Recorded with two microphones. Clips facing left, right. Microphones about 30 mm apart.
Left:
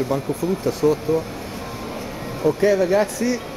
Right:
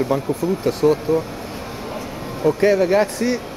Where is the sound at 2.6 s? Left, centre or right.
Right.